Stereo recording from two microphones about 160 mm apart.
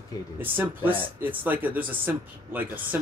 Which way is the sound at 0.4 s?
10° right (ahead or behind).